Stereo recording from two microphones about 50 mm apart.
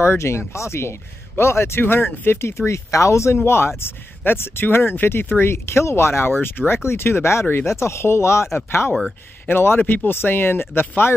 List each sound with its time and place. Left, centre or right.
0.0 s speech: left
1.8 s speech: left
3.4 s speech: left
5.4 s speech: left
6.3 s speech: left
8.5 s speech: left